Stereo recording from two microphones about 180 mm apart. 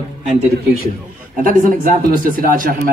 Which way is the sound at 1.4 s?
50° right (ahead or behind).